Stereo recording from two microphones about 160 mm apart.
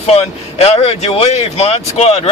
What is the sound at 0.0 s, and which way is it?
A man's voice, 40° left (ahead or behind).